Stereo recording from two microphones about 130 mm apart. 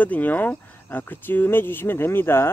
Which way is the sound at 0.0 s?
10° left (ahead or behind).